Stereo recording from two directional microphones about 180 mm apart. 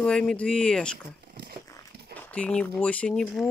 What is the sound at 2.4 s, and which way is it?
Speech, 5° left (ahead or behind).